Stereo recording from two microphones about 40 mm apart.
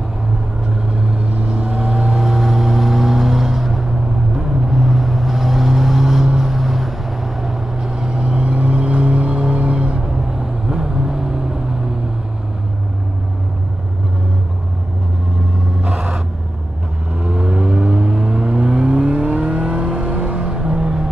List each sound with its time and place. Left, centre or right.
0.8 s vehicle: right
2.1 s vehicle: centre
8.5 s vehicle: right; by 11.4 s centre
15.8 s vehicle: centre
17.2 s vehicle: right